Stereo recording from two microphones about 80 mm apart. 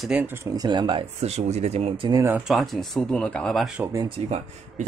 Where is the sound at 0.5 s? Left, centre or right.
Right.